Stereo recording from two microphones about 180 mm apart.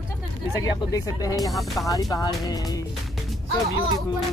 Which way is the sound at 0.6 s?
20° left (ahead or behind).